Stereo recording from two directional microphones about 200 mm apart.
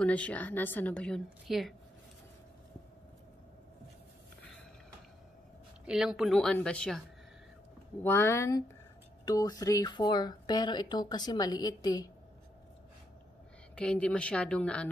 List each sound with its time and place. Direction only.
0.0 s a woman's voice: 5° left (ahead or behind)
5.9 s a woman's voice: 5° right (ahead or behind)
8.0 s a woman's voice: 10° left (ahead or behind)
13.7 s a woman's voice: 5° left (ahead or behind)